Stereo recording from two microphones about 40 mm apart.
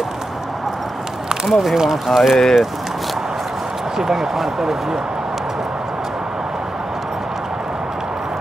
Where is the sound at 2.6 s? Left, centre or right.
Centre.